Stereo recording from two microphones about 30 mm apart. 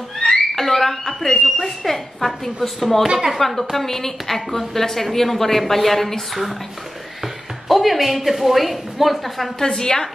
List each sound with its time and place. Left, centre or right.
0.2 s a sound: left
0.6 s alarm: centre
1.6 s a woman's voice: centre
7.6 s a woman's voice: centre
9.6 s a woman's voice: left